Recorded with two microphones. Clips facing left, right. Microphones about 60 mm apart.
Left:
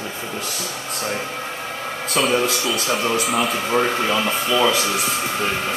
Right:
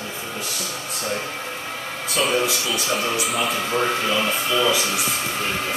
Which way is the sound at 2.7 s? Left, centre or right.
Centre.